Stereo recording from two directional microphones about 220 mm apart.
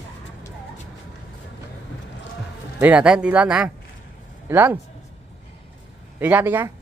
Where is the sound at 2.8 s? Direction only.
5° right (ahead or behind).